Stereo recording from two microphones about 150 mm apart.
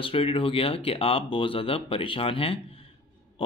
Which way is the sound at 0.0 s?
40° left (ahead or behind).